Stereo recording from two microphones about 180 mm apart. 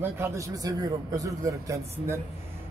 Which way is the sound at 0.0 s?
15° right (ahead or behind).